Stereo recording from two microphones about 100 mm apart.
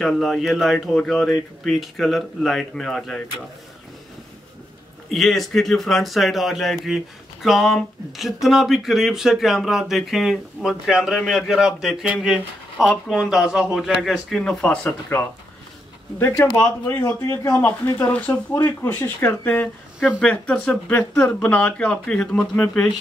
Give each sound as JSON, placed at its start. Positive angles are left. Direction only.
{"t": 0.0, "sound": "speech", "side_deg": 0}
{"t": 5.1, "sound": "speech", "side_deg": 0}
{"t": 14.4, "sound": "speech", "side_deg": 10}
{"t": 14.9, "sound": "speech", "side_deg": 25}